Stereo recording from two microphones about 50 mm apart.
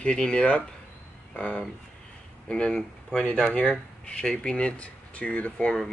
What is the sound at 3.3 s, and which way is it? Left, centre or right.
Speech, left.